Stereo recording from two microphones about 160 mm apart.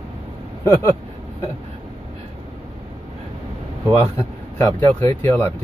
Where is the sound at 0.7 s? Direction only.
15° left (ahead or behind).